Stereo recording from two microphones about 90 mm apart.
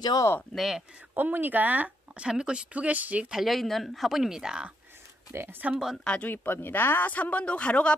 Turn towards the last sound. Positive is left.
turn(degrees=15)  # may be behind; listen again after turning